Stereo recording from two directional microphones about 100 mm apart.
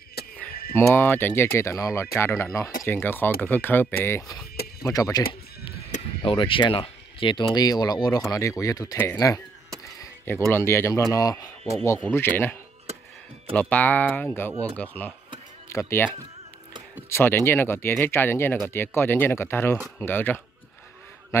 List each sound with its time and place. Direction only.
0.4 s speech: 20° left (ahead or behind)
4.3 s speech: 40° left (ahead or behind)
6.2 s speech: 60° left (ahead or behind); by 9.4 s 35° left (ahead or behind)
9.9 s a sound: 25° left (ahead or behind)
10.5 s speech: 25° left (ahead or behind)
12.1 s speech: 20° left (ahead or behind)
13.6 s speech: 15° left (ahead or behind)
17.1 s speech: 25° left (ahead or behind)